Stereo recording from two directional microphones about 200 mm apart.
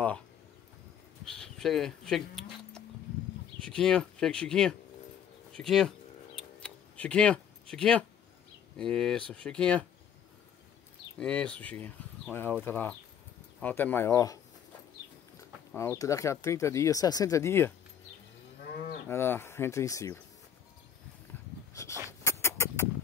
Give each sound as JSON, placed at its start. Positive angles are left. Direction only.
{"t": 1.2, "sound": "speech", "side_deg": 0}
{"t": 5.5, "sound": "a sound", "side_deg": 0}
{"t": 8.7, "sound": "speech", "side_deg": 5}
{"t": 11.1, "sound": "speech", "side_deg": 5}
{"t": 19.0, "sound": "speech", "side_deg": 10}
{"t": 21.3, "sound": "dog", "side_deg": 10}
{"t": 22.2, "sound": "rodents", "side_deg": 15}